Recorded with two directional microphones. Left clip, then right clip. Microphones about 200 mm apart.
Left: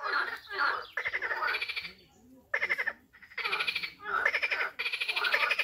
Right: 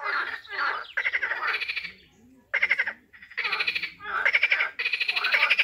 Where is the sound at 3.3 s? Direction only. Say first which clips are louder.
Right 5 dB; 45° right (ahead or behind).